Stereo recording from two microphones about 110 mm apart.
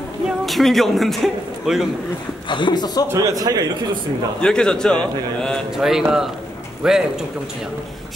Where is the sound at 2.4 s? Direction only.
45° left (ahead or behind).